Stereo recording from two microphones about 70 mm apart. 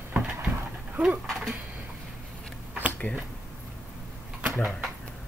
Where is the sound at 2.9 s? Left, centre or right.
Left.